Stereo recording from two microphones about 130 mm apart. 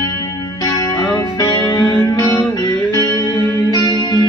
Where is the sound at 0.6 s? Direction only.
25° left (ahead or behind).